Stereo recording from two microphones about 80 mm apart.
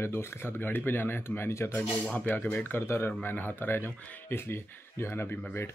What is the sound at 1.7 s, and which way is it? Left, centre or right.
Speech, centre.